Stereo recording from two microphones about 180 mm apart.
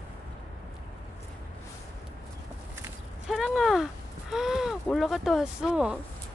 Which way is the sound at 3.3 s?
Centre (ahead or behind).